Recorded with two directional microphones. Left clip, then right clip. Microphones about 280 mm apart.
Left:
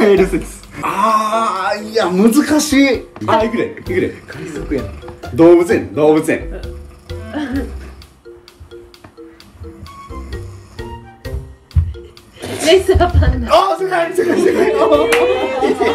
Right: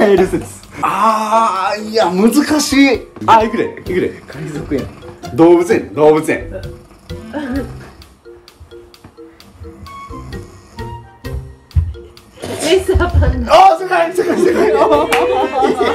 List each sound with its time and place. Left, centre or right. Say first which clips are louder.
0.7 s speech: right 1 dB; centre
3.3 s speech: right 3 dB; centre
9.8 s music: right 3 dB; centre
13.5 s speech: right 5 dB; centre